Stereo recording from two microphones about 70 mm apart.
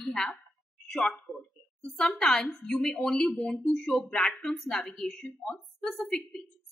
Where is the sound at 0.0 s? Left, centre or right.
Centre.